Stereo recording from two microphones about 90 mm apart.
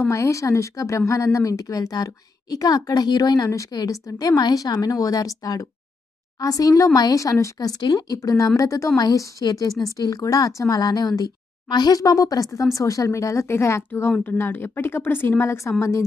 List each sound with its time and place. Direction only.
0.1 s a woman's voice: 35° left (ahead or behind)